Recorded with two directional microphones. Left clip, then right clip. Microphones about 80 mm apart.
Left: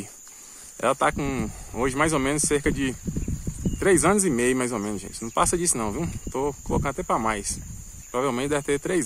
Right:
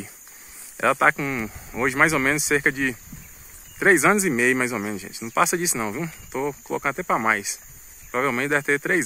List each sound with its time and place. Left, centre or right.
0.7 s a man's voice: left